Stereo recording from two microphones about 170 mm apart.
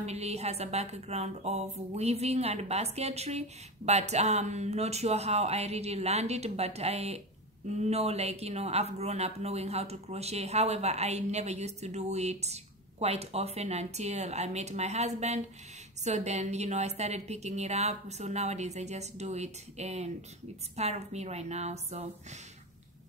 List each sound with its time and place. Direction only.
0.0 s speech: 40° right (ahead or behind)